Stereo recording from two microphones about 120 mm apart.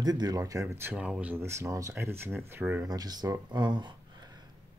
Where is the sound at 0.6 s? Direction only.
20° right (ahead or behind).